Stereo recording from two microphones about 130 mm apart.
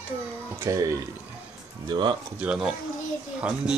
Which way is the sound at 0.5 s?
25° right (ahead or behind).